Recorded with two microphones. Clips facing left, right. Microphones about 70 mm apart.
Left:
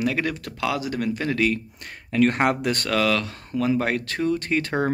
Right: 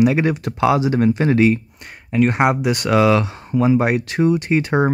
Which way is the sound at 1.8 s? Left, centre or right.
Centre.